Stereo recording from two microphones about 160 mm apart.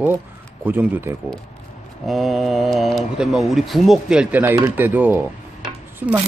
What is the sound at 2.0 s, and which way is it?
Speech, centre (ahead or behind).